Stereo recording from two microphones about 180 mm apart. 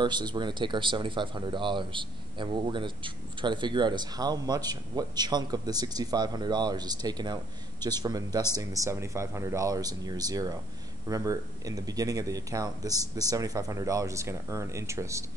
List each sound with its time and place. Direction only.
0.0 s speech: 25° right (ahead or behind)